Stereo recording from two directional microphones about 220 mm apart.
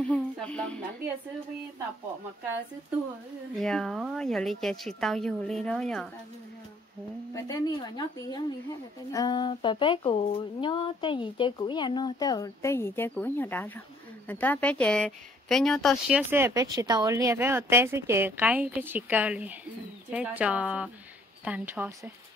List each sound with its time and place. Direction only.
0.1 s a sound: 5° left (ahead or behind)
3.5 s a woman's voice: 5° left (ahead or behind)
7.3 s a woman's voice: 15° left (ahead or behind); by 22.1 s 10° right (ahead or behind)